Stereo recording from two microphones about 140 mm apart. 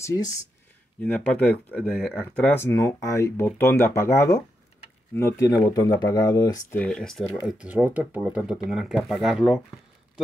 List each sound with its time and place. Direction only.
0.0 s speech: 25° left (ahead or behind)
1.0 s speech: 10° left (ahead or behind); by 6.6 s 25° left (ahead or behind)
6.7 s speech: 10° left (ahead or behind)
7.5 s speech: 10° right (ahead or behind)